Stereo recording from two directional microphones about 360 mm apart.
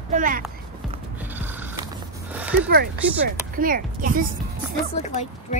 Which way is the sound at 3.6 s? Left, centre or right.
Right.